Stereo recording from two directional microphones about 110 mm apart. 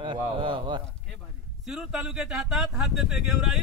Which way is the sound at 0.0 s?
45° right (ahead or behind).